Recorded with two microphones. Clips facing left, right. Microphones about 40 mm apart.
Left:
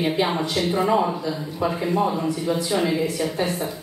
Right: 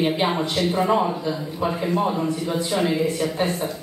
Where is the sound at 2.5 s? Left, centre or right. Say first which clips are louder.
Left 1 dB; centre.